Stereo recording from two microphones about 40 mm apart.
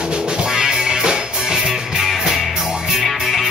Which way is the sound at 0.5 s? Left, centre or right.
Centre.